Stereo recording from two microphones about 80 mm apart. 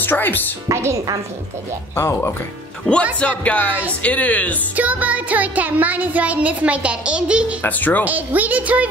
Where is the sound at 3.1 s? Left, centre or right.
Centre.